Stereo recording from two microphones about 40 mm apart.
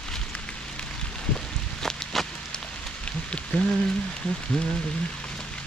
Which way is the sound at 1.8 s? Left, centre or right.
Centre.